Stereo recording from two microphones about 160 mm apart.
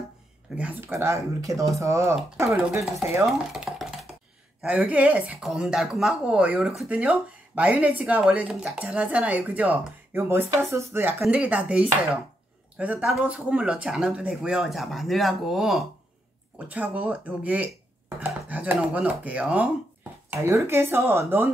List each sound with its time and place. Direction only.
0.6 s speech: 10° right (ahead or behind)
3.3 s stir: centre (ahead or behind)
4.6 s speech: 5° right (ahead or behind)
20.2 s speech: 15° right (ahead or behind)